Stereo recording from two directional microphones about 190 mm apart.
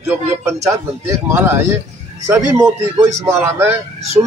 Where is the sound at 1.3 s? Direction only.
10° right (ahead or behind).